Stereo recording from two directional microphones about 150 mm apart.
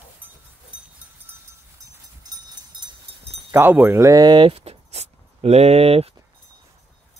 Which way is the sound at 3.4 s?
15° right (ahead or behind).